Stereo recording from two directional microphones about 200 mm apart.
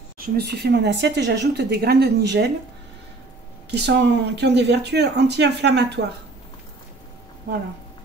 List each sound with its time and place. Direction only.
0.2 s speech: 50° right (ahead or behind)
3.7 s speech: 60° right (ahead or behind)